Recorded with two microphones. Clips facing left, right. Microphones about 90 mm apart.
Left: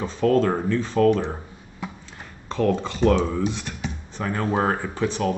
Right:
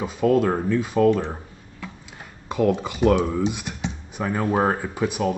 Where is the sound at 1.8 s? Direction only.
20° left (ahead or behind).